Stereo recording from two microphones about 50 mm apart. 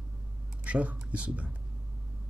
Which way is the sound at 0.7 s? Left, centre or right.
Right.